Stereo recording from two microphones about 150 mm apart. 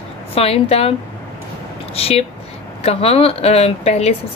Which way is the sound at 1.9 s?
40° left (ahead or behind).